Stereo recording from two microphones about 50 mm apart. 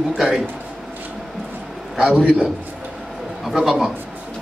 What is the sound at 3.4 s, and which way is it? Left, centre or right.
Speech, centre.